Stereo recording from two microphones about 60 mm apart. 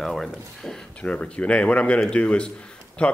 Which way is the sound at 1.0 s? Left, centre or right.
Centre.